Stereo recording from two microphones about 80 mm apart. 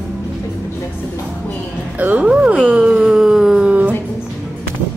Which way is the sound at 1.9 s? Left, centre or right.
Right.